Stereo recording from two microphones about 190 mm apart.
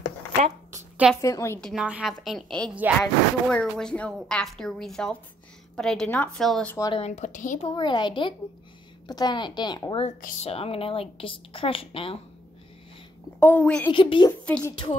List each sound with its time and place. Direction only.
1.2 s a woman's voice: 15° left (ahead or behind)
1.6 s speech: centre (ahead or behind)
6.8 s a woman's voice: 30° left (ahead or behind)
7.6 s a woman's voice: 25° left (ahead or behind)
10.0 s a woman's voice: 35° left (ahead or behind)
13.4 s a woman's voice: 10° left (ahead or behind)
13.8 s a woman's voice: 25° left (ahead or behind)
14.4 s a woman's voice: 5° left (ahead or behind)